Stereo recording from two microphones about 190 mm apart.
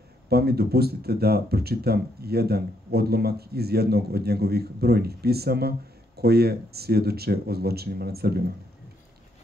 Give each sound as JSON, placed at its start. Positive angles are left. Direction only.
{"t": 0.3, "sound": "speech", "side_deg": -55}